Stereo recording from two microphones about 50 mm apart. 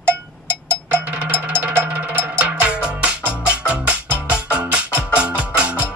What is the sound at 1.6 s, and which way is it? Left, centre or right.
Music, right.